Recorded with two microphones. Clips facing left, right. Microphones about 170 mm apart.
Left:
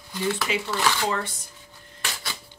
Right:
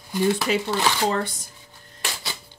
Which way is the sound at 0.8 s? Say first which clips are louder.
Right 2 dB; 30° right (ahead or behind).